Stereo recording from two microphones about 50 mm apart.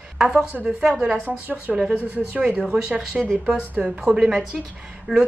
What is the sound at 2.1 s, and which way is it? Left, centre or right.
Speech, right.